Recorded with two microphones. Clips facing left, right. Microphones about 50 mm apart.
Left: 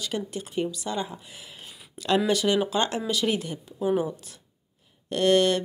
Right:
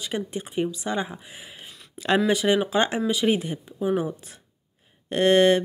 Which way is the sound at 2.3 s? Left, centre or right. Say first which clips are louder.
Right 2 dB; centre.